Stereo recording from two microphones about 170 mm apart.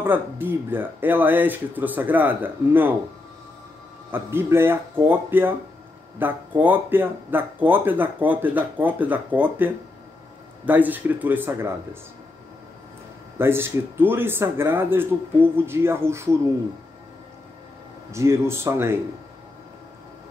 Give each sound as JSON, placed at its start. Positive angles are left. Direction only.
{"t": 0.0, "sound": "speech", "side_deg": -10}
{"t": 4.1, "sound": "speech", "side_deg": -15}
{"t": 13.4, "sound": "speech", "side_deg": -15}
{"t": 18.1, "sound": "speech", "side_deg": -15}